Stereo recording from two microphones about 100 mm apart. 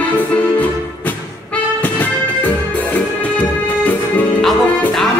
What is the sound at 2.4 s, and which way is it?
Music, 15° left (ahead or behind).